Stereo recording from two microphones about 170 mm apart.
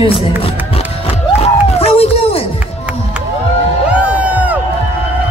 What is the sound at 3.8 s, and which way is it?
Music, 5° right (ahead or behind).